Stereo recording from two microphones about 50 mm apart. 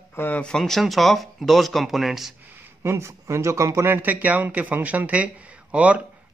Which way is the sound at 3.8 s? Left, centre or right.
Right.